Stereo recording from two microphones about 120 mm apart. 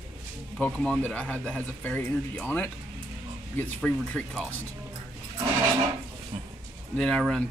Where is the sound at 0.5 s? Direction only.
10° left (ahead or behind).